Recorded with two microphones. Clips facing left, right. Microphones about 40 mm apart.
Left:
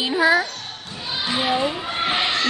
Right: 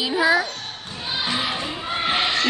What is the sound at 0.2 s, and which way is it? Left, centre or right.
Speech, centre.